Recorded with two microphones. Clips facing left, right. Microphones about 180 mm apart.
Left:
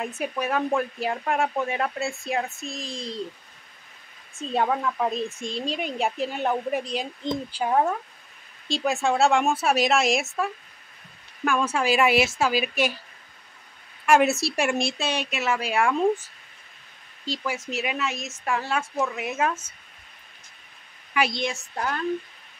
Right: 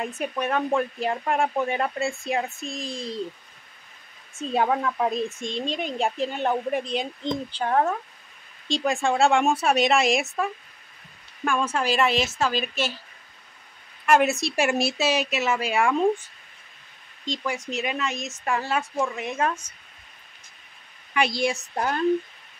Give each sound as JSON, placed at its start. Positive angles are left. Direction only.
{"t": 0.0, "sound": "speech", "side_deg": 5}
{"t": 4.4, "sound": "a woman's voice", "side_deg": -5}
{"t": 14.0, "sound": "speech", "side_deg": 5}
{"t": 21.1, "sound": "a sound", "side_deg": 5}
{"t": 21.4, "sound": "a child's voice", "side_deg": -10}
{"t": 21.7, "sound": "speech", "side_deg": -25}